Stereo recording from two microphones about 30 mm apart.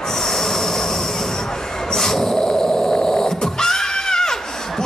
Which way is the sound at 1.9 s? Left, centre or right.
Centre.